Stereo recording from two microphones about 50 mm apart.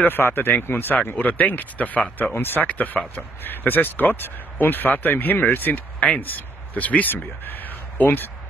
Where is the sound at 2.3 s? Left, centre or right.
Left.